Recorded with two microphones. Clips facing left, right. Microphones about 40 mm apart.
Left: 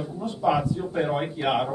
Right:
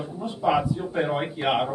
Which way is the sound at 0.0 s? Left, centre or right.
Centre.